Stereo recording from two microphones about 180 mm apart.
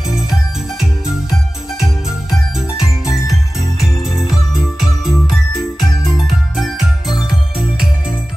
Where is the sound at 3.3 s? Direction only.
Centre (ahead or behind).